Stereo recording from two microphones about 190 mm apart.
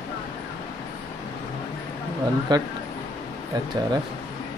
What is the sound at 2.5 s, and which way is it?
Speech, 20° right (ahead or behind).